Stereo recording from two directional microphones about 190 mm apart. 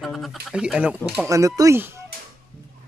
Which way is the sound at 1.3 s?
15° right (ahead or behind).